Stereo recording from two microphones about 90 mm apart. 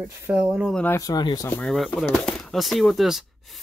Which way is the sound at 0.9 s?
45° left (ahead or behind).